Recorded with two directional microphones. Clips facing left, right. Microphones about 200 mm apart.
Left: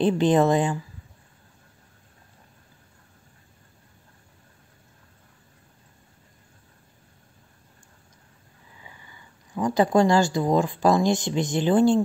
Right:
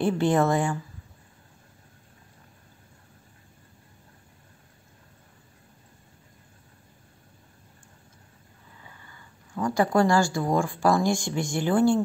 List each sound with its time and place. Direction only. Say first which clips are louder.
0.0 s a woman's voice: left 3 dB; 20° left (ahead or behind)
8.8 s speech: left 2 dB; 15° left (ahead or behind)